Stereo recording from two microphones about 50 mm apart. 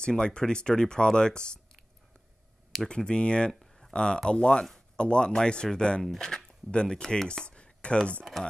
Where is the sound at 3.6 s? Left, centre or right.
Centre.